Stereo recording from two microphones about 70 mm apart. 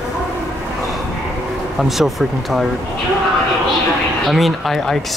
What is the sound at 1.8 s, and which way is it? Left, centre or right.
Speech, centre.